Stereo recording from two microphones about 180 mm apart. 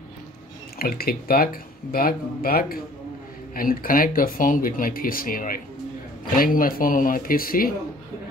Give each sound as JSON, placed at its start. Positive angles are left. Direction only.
{"t": 0.7, "sound": "speech", "side_deg": 55}